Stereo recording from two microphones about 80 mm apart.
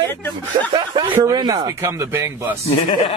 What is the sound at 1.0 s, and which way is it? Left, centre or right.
Speech, right.